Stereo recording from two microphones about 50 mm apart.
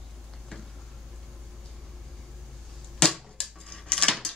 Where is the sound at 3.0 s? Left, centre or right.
Centre.